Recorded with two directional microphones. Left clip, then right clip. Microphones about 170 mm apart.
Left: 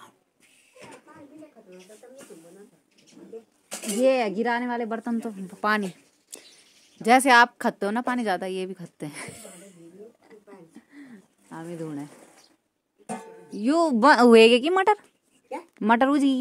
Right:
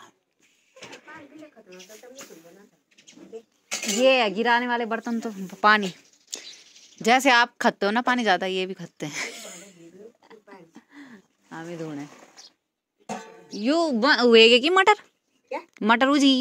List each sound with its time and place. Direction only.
3.0 s bird: 5° right (ahead or behind)
3.6 s speech: 25° left (ahead or behind)
5.6 s speech: centre (ahead or behind)
6.3 s bird: 5° left (ahead or behind)
7.0 s speech: 5° left (ahead or behind)
10.2 s a sound: 25° left (ahead or behind)
13.0 s speech: 30° left (ahead or behind); by 14.3 s 50° left (ahead or behind)
14.5 s a woman's voice: 10° left (ahead or behind)